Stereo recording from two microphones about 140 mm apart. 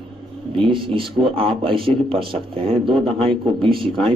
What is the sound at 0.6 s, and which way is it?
A man's voice, 40° right (ahead or behind).